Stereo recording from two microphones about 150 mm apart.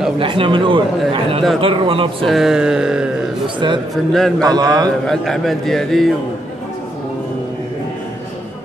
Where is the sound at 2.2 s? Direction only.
Centre (ahead or behind).